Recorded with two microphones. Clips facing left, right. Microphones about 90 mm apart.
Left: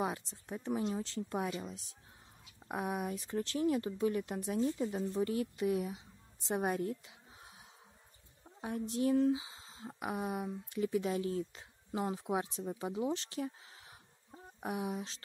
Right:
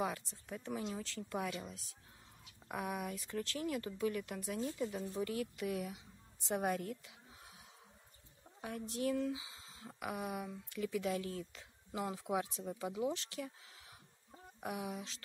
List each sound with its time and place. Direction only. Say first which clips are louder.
0.0 s a woman's voice: left 2 dB; 25° left (ahead or behind)